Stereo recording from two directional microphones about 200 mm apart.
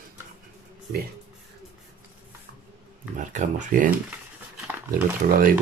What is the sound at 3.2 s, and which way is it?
Speech, 40° right (ahead or behind).